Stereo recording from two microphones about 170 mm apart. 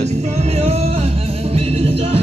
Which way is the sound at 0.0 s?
40° right (ahead or behind).